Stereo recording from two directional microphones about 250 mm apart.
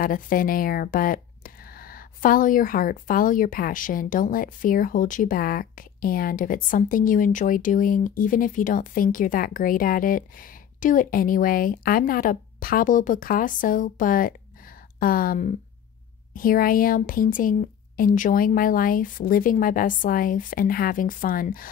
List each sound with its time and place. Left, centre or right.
0.0 s speech: left